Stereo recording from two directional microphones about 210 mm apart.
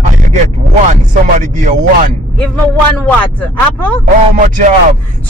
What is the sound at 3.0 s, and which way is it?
Speech, 5° left (ahead or behind).